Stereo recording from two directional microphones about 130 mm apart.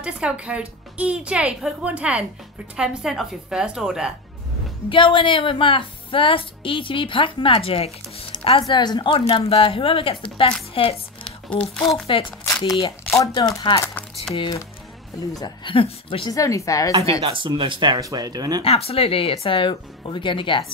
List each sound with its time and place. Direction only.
0.0 s a woman's voice: 10° right (ahead or behind)
4.8 s a woman's voice: 40° left (ahead or behind)
8.3 s a woman's voice: 35° left (ahead or behind)
12.1 s a woman's voice: 40° left (ahead or behind)
13.1 s speech: 25° left (ahead or behind)
14.3 s a woman's voice: 5° left (ahead or behind)
15.3 s speech: 35° left (ahead or behind)
16.3 s speech: 25° left (ahead or behind)
17.2 s speech: 40° right (ahead or behind)
18.6 s speech: 50° left (ahead or behind)